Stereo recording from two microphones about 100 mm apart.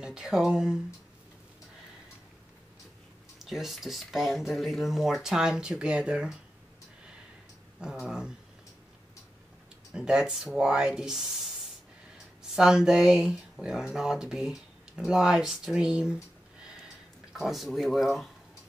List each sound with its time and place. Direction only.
0.0 s speech: 5° right (ahead or behind)
3.3 s speech: centre (ahead or behind)
7.8 s speech: 5° right (ahead or behind)
9.9 s speech: 5° right (ahead or behind)
16.6 s a sound: 5° right (ahead or behind)